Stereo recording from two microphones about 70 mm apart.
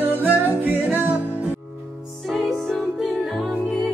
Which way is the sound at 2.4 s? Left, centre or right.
Centre.